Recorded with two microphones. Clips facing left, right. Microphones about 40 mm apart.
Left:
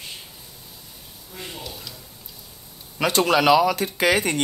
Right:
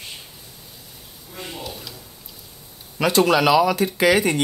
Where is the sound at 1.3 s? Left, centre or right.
Centre.